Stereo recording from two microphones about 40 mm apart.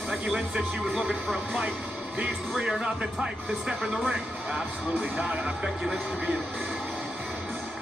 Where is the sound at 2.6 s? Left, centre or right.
Right.